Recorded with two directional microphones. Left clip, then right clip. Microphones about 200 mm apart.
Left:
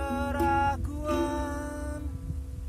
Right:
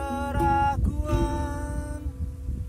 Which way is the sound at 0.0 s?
15° left (ahead or behind).